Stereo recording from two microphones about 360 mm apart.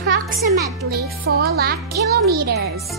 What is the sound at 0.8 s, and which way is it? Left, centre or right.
A child's voice, right.